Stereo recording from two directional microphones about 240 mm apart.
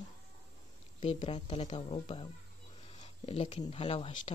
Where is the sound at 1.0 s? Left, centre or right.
Left.